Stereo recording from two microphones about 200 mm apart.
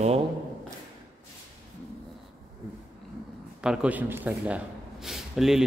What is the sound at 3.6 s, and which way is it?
A man's voice, 5° right (ahead or behind).